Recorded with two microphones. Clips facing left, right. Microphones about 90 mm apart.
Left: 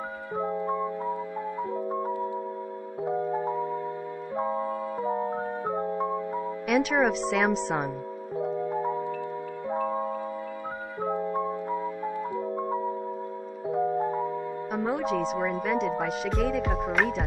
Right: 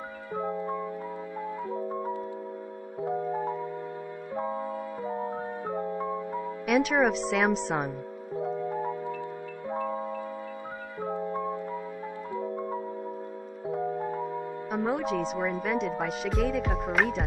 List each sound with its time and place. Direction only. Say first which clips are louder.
0.4 s music: left 3 dB; 20° left (ahead or behind)
1.9 s music: left 3 dB; 20° left (ahead or behind)
4.4 s music: left 3 dB; 25° left (ahead or behind)
6.7 s speech: even; centre (ahead or behind)
8.4 s music: left 2 dB; 20° left (ahead or behind)
9.7 s marimba: left 3 dB; 20° left (ahead or behind)
11.0 s music: left 3 dB; 20° left (ahead or behind)
14.7 s speech: even; centre (ahead or behind)